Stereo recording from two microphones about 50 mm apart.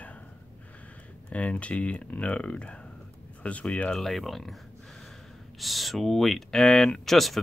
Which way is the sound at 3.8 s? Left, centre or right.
Centre.